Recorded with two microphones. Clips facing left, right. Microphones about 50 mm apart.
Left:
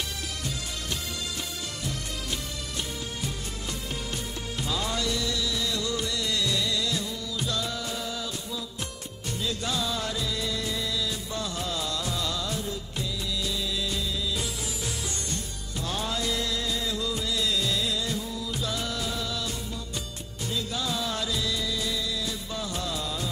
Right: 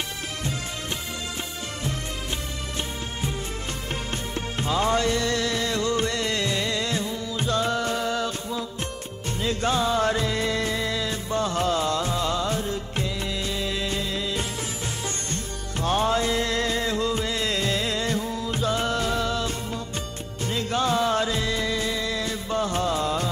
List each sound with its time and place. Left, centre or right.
4.6 s music of bollywood: right
9.4 s music: right
15.8 s music: right
20.5 s music of bollywood: right